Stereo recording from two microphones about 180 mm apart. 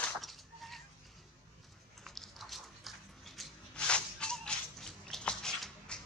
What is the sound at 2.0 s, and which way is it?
Dog, centre (ahead or behind).